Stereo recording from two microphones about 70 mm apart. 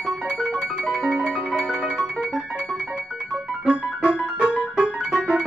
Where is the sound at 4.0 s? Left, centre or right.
Centre.